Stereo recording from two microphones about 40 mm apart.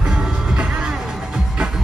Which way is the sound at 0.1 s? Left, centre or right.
Right.